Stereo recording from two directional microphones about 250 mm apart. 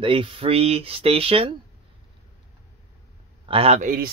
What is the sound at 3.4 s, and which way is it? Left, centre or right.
Speech, right.